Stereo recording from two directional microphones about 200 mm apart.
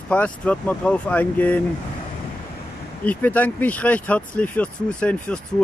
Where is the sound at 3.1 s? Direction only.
10° left (ahead or behind).